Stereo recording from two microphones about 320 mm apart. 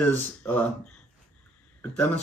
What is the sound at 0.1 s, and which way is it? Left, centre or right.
Speech, centre.